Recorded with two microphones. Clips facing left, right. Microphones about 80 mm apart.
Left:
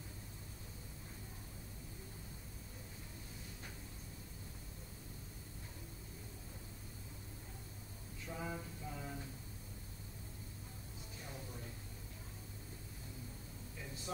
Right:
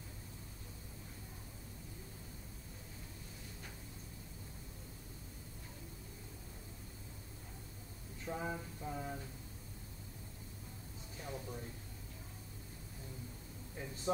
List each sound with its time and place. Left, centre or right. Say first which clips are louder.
8.3 s a sound: right 4 dB; right
8.8 s music: right 7 dB; right
14.1 s speech: right 9 dB; right